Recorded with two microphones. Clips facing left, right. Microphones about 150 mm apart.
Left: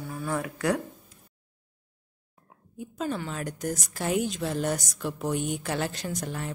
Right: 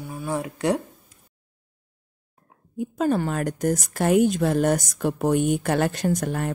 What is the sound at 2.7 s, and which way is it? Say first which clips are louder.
Speech: right 9 dB; 50° right (ahead or behind).